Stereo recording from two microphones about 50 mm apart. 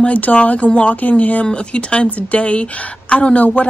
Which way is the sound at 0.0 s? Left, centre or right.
Left.